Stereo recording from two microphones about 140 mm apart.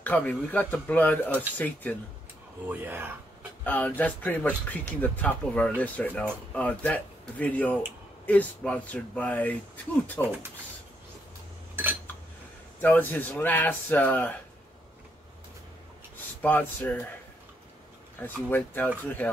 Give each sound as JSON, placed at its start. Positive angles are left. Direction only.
{"t": 0.0, "sound": "a man's voice", "side_deg": 10}
{"t": 2.7, "sound": "speech", "side_deg": -15}
{"t": 3.6, "sound": "a man's voice", "side_deg": 10}
{"t": 12.8, "sound": "a man's voice", "side_deg": 15}
{"t": 16.3, "sound": "a man's voice", "side_deg": 10}
{"t": 18.2, "sound": "a man's voice", "side_deg": 15}